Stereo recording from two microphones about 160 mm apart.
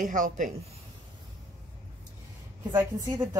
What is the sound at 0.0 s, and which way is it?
Speech, 55° right (ahead or behind).